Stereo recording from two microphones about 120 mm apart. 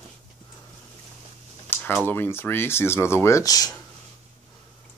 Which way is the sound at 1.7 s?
20° left (ahead or behind).